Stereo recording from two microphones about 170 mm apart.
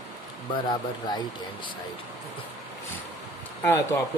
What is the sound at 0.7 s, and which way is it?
Speech, 25° left (ahead or behind).